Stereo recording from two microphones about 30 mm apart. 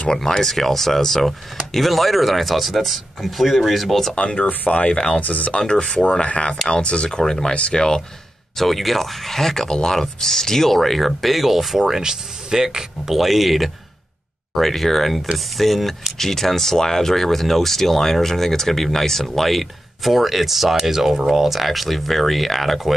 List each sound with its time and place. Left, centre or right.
0.2 s speech: centre
4.1 s speech: left
5.7 s speech: left
7.2 s speech: left
8.5 s speech: centre
11.8 s speech: centre